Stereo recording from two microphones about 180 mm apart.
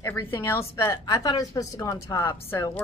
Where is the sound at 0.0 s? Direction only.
15° left (ahead or behind).